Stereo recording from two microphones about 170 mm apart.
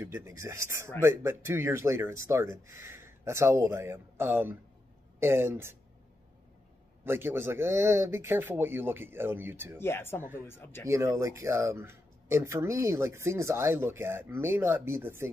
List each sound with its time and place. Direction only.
0.0 s speech: 15° right (ahead or behind)
7.1 s speech: 15° right (ahead or behind)
9.8 s speech: 15° left (ahead or behind)
10.9 s speech: 15° right (ahead or behind)